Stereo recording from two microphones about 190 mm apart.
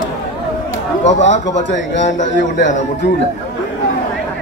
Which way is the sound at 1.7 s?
70° left (ahead or behind).